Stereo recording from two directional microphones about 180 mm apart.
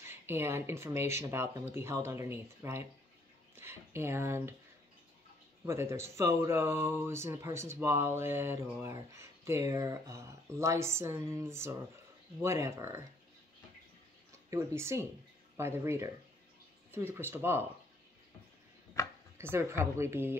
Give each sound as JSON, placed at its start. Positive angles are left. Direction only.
{"t": 0.0, "sound": "speech", "side_deg": -15}
{"t": 5.7, "sound": "speech", "side_deg": -15}
{"t": 14.5, "sound": "speech", "side_deg": -15}
{"t": 19.5, "sound": "speech", "side_deg": -15}